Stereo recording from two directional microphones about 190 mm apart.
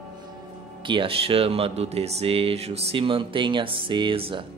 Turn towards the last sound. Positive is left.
turn(degrees=-30)  # may be behind; listen again after turning